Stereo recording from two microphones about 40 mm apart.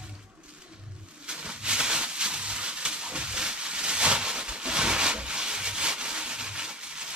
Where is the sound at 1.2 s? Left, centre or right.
Right.